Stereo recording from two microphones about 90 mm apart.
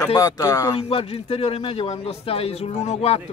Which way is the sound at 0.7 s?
90° left.